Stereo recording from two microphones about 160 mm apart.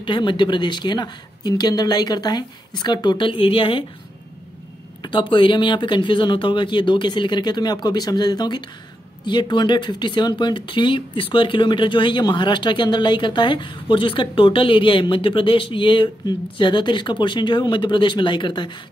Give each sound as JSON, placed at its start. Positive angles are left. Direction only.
{"t": 0.0, "sound": "speech", "side_deg": 30}
{"t": 5.0, "sound": "speech", "side_deg": 30}